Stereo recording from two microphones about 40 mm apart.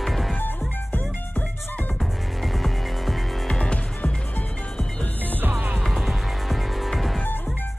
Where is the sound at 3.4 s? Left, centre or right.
Left.